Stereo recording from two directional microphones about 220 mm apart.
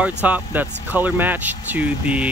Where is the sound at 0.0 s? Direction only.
5° right (ahead or behind).